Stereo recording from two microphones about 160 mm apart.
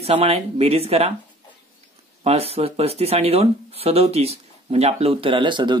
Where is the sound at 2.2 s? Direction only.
40° right (ahead or behind).